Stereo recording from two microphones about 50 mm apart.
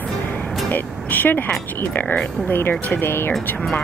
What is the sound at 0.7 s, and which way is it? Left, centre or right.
Speech, left.